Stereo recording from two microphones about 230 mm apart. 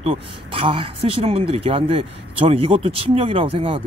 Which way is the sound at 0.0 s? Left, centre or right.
Right.